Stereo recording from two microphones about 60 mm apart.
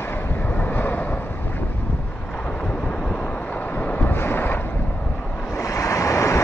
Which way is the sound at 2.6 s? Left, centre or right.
Centre.